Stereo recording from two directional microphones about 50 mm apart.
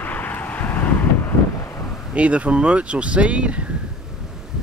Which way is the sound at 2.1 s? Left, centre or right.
Right.